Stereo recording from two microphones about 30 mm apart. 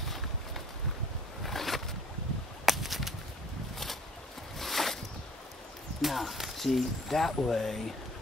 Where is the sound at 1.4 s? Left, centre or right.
Centre.